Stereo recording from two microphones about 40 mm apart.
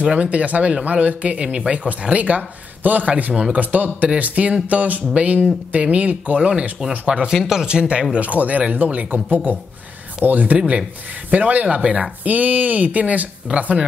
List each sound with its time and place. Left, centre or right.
0.0 s a man's voice: right
1.4 s speech: right
1.9 s a man's voice: right
7.4 s speech: centre
8.1 s a man's voice: right